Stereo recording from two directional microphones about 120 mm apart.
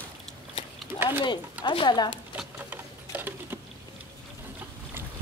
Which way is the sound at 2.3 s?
15° right (ahead or behind).